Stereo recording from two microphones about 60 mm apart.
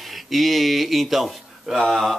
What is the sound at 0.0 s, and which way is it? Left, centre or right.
Speech, centre.